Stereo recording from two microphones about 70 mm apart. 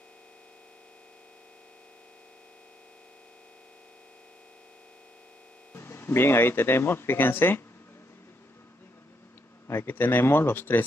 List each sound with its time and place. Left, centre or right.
5.8 s speech: left
9.7 s speech: left